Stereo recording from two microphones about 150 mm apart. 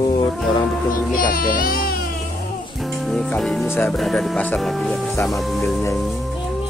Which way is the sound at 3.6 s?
15° left (ahead or behind).